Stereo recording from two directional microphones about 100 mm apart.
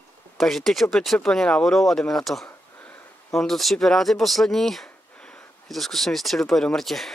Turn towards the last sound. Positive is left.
turn(degrees=0)  # may be behind; listen again after turning